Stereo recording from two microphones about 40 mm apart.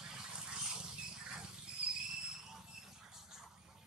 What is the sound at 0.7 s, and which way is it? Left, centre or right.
Rodents, centre.